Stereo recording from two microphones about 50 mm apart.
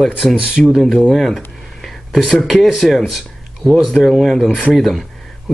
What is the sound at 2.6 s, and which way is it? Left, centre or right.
Speech, centre.